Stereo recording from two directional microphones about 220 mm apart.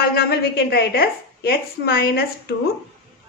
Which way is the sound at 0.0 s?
45° left (ahead or behind).